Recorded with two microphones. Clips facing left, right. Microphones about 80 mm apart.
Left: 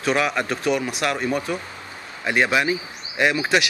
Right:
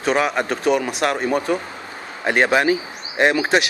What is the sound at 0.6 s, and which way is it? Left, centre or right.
A man's voice, right.